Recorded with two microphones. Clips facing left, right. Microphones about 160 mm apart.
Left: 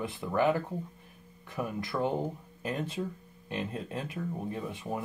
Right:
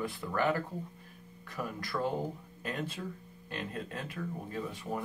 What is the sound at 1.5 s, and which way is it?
Speech, 20° left (ahead or behind).